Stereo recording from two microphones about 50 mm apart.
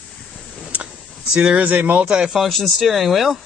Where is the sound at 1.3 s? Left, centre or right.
Right.